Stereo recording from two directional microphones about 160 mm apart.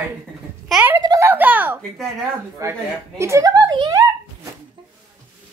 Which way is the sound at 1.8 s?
Centre (ahead or behind).